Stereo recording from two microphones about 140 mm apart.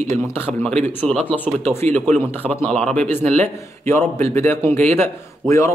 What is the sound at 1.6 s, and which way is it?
Speech, 50° right (ahead or behind).